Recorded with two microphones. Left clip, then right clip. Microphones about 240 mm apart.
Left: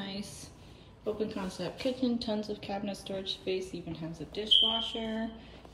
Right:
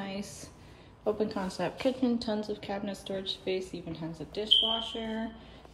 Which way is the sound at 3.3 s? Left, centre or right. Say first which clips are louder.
Right 1 dB; centre.